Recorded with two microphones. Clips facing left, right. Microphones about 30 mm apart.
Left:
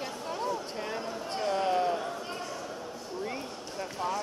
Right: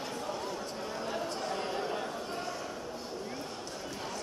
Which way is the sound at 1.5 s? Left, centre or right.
Left.